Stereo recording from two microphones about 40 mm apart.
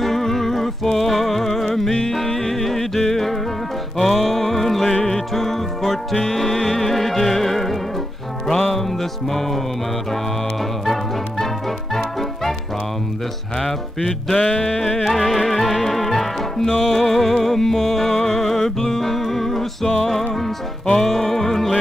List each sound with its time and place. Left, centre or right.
0.0 s a sound: centre
0.9 s music: centre
10.9 s music: centre
13.6 s music: centre
14.3 s music: left
14.8 s music: centre
15.0 s music: centre